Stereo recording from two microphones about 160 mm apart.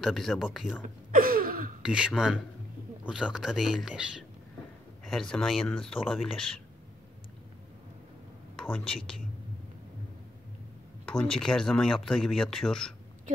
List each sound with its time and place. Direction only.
0.0 s speech: centre (ahead or behind)
0.8 s a sound: 65° right (ahead or behind)
1.8 s speech: 5° right (ahead or behind)
8.5 s speech: 5° left (ahead or behind)
11.1 s speech: 5° left (ahead or behind)